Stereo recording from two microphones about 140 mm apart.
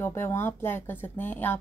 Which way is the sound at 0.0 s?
15° left (ahead or behind).